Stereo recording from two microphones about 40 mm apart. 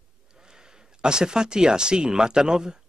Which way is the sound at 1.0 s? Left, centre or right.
Centre.